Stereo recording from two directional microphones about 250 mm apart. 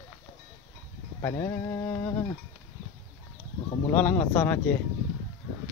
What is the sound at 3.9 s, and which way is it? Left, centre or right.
Speech, centre.